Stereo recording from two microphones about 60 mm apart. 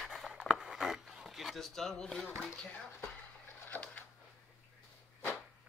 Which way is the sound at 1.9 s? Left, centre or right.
Centre.